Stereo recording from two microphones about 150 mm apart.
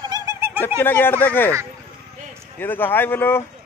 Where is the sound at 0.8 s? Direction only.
15° left (ahead or behind).